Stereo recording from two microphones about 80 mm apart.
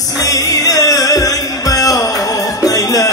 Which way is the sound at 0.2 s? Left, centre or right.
Left.